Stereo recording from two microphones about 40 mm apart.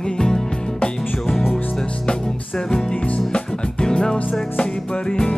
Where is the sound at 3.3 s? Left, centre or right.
Left.